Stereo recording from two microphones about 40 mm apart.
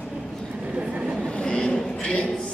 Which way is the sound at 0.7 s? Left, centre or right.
Right.